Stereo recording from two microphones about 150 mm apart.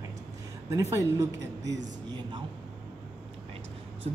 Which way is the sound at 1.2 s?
25° right (ahead or behind).